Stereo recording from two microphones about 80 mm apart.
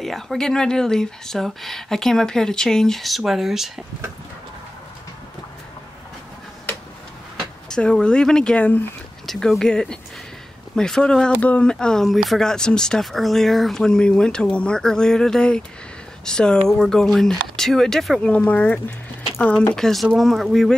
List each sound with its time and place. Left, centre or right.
0.0 s speech: centre
7.7 s speech: centre
9.2 s speech: centre
18.2 s speech: centre
19.7 s speech: centre